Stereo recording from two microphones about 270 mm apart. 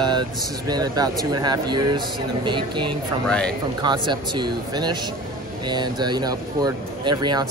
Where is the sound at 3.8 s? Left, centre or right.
Centre.